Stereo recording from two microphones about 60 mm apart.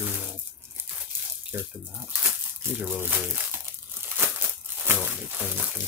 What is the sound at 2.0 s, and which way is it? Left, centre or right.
Crumpling, right.